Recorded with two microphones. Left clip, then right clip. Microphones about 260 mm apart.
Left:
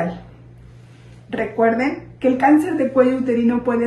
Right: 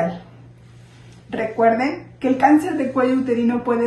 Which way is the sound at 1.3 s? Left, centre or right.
Centre.